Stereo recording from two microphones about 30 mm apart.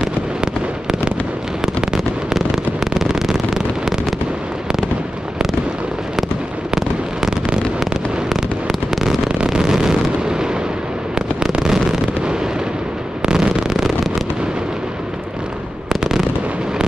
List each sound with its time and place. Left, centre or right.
1.8 s fireworks: right
6.7 s fireworks: centre
9.5 s fireworks: right
11.5 s fireworks: right
15.9 s fireworks: centre